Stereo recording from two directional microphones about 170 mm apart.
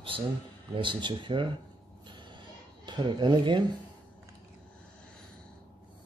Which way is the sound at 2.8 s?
25° right (ahead or behind).